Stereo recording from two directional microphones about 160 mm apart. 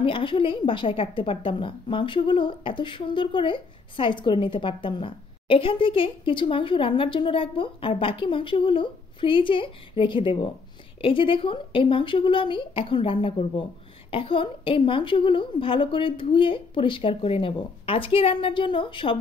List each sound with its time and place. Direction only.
0.0 s a woman's voice: 30° left (ahead or behind)